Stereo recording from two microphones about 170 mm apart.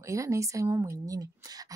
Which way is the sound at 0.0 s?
20° right (ahead or behind).